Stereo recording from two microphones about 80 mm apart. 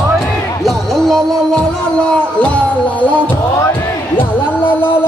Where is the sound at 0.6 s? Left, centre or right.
Centre.